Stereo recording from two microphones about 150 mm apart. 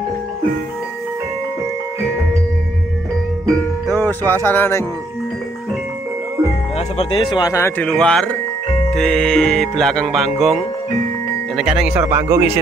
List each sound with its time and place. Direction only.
4.3 s music: 15° left (ahead or behind)
7.0 s speech: 30° left (ahead or behind)
7.8 s music: 5° left (ahead or behind)
11.5 s speech: 5° right (ahead or behind)